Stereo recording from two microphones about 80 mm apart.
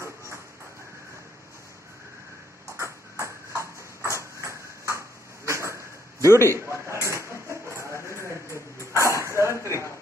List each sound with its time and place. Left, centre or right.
2.8 s ping: right
6.4 s a sound: right
8.7 s dog: right